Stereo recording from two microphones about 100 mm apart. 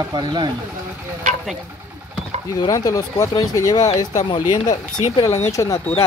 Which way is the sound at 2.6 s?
40° left (ahead or behind).